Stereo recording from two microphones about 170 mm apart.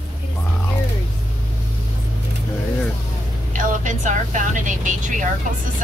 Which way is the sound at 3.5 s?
50° right (ahead or behind).